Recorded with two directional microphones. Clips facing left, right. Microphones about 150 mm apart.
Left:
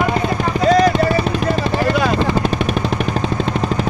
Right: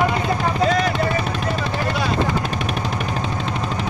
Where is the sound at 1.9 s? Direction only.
60° left (ahead or behind).